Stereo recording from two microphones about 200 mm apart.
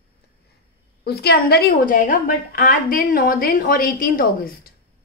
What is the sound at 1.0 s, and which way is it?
A woman's voice, 55° left (ahead or behind).